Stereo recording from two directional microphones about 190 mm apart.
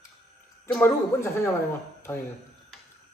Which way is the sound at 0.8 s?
15° left (ahead or behind).